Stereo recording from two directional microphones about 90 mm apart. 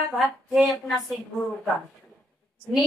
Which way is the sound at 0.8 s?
Centre (ahead or behind).